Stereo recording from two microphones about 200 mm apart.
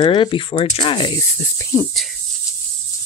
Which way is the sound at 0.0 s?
25° left (ahead or behind).